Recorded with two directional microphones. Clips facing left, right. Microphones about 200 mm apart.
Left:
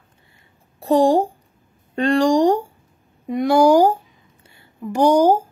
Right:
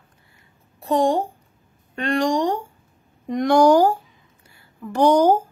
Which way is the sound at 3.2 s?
5° left (ahead or behind).